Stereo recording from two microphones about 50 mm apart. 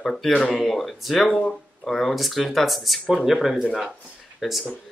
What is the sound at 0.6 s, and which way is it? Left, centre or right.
Speech, centre.